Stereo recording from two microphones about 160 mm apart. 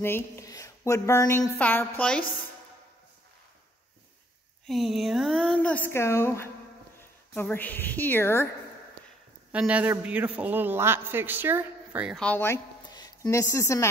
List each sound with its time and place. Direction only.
0.0 s speech: 15° left (ahead or behind)
4.6 s a woman's voice: centre (ahead or behind); by 8.5 s 15° left (ahead or behind)
9.5 s a man's voice: 10° right (ahead or behind)
12.2 s speech: 10° left (ahead or behind)
12.9 s speech: 25° left (ahead or behind)